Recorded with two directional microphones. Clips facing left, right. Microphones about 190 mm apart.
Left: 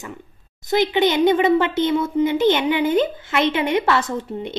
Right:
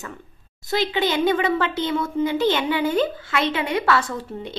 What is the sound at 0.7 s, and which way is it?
A woman's voice, 20° left (ahead or behind).